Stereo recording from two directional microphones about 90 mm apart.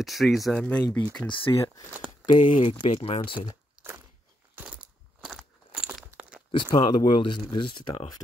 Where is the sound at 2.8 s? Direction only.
85° left.